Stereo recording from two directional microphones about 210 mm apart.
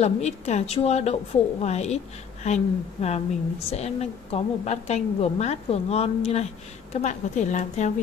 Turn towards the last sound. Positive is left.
turn(degrees=35)  # may be behind; listen again after turning